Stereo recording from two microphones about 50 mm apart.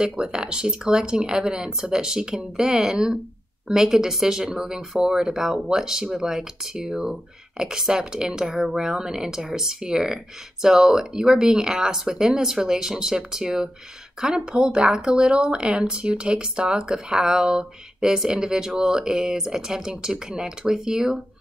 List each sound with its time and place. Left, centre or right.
0.0 s speech: centre